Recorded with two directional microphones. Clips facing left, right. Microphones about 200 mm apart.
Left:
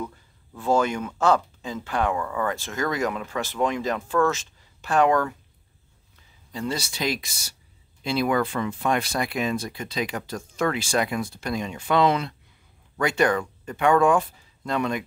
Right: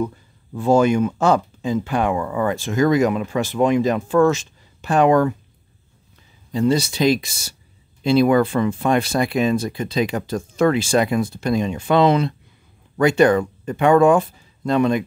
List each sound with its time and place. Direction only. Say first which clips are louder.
0.6 s speech: right 7 dB; 15° right (ahead or behind)
6.5 s speech: right 11 dB; 20° right (ahead or behind)